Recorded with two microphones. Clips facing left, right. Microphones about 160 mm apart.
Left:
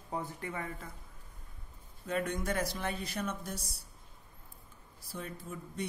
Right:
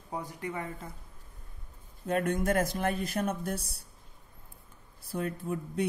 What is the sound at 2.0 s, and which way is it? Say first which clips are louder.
Speech: right 6 dB; 50° right (ahead or behind).